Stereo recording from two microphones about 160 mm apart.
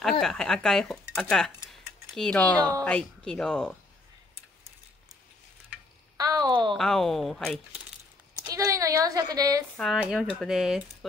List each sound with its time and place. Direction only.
0.2 s speech: 5° left (ahead or behind)
1.3 s a sound: centre (ahead or behind)
2.8 s speech: 5° left (ahead or behind)
6.1 s a sound: 25° right (ahead or behind)
6.7 s speech: 5° left (ahead or behind)
8.4 s a woman's voice: 20° right (ahead or behind)
9.8 s speech: centre (ahead or behind)